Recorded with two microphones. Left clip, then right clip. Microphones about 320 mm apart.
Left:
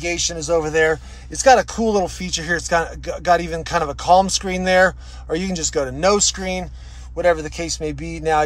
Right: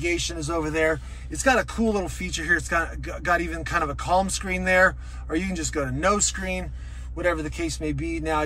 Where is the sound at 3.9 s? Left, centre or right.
Centre.